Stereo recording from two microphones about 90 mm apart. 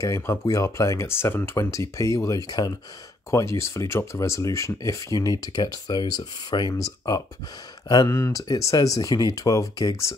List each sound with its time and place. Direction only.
0.0 s speech: 35° left (ahead or behind)
1.6 s speech: 35° left (ahead or behind)
3.3 s speech: 30° left (ahead or behind)